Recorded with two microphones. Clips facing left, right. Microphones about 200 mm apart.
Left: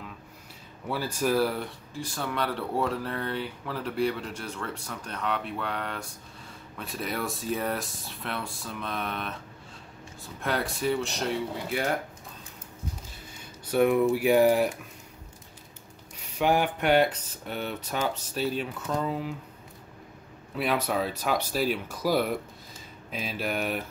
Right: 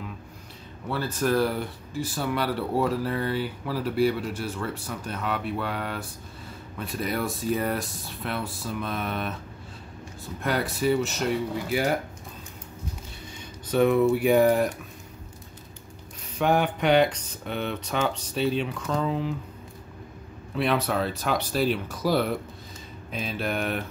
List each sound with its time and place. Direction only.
0.8 s speech: 10° left (ahead or behind)
13.7 s speech: 10° left (ahead or behind)
16.3 s speech: 10° left (ahead or behind)
20.5 s speech: 10° left (ahead or behind)